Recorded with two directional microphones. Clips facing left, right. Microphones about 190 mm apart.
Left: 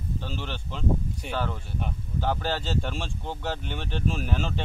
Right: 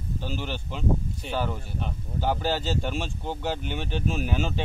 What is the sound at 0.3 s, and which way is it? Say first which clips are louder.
Speech: right 3 dB; 5° right (ahead or behind).